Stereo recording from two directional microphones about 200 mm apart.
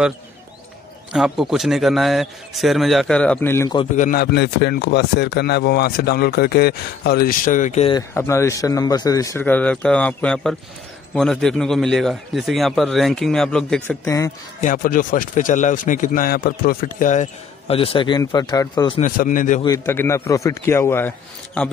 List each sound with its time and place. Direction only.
1.1 s a man's voice: centre (ahead or behind)
3.9 s speech: 45° left (ahead or behind)
7.9 s a man's voice: 15° left (ahead or behind)
14.6 s a man's voice: 40° left (ahead or behind); by 18.9 s 20° left (ahead or behind)
18.9 s a man's voice: 40° left (ahead or behind)
19.6 s a man's voice: 20° left (ahead or behind)